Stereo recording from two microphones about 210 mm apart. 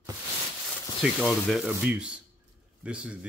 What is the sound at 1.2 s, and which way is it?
Speech, centre (ahead or behind).